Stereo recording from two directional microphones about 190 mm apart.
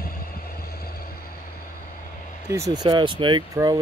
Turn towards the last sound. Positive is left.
turn(degrees=-20)  # may be behind; listen again after turning